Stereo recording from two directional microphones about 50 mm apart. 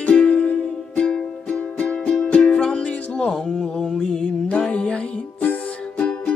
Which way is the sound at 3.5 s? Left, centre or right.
Centre.